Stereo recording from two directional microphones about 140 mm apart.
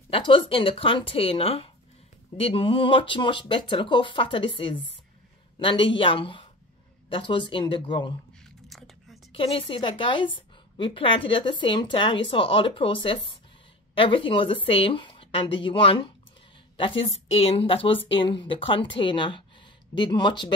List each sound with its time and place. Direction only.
0.1 s a woman's voice: 35° left (ahead or behind)
8.6 s whispering: centre (ahead or behind)
9.3 s a woman's voice: 40° left (ahead or behind)